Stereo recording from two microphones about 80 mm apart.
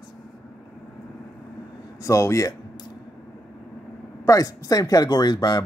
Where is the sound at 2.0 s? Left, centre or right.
Left.